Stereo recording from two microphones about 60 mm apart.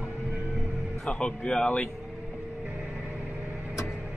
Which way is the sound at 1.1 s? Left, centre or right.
Centre.